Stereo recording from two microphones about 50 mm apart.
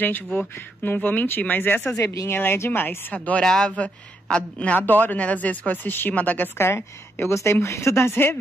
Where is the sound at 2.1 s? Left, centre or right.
Left.